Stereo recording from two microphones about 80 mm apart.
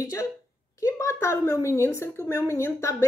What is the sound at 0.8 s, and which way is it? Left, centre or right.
A woman's voice, left.